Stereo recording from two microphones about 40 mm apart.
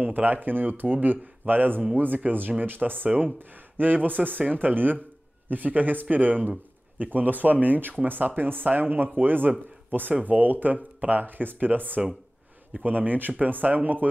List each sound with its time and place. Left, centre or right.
0.0 s speech: right